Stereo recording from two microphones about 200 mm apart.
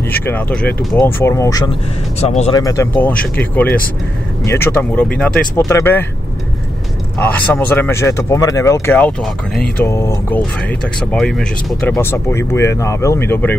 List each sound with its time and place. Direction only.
0.1 s speech: 10° left (ahead or behind)
2.1 s speech: 30° left (ahead or behind)
2.5 s speech: 15° left (ahead or behind)
7.2 s speech: 10° left (ahead or behind)